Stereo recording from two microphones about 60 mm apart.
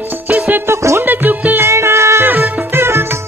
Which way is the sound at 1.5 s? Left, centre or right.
Right.